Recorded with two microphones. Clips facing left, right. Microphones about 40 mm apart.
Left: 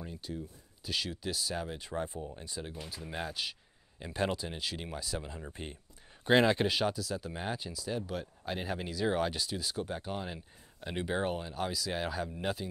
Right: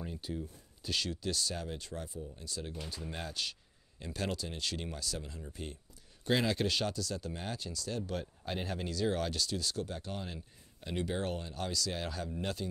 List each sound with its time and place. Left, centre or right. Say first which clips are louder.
0.0 s a sound: right 1 dB; centre
0.8 s speech: even; centre
2.0 s speech: left 6 dB; left
2.6 s speech: right 2 dB; centre
5.4 s speech: left 1 dB; left
6.7 s speech: left 3 dB; centre